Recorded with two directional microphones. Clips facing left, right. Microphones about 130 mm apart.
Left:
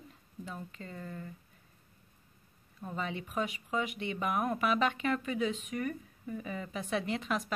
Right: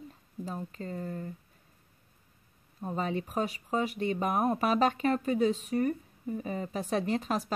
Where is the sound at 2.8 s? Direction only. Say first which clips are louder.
Right 5 dB; 40° right (ahead or behind).